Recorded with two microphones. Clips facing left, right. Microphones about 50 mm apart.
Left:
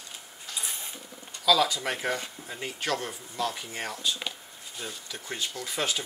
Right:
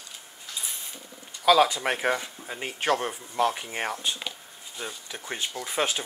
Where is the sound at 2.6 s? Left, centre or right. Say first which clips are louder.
Right 5 dB; right.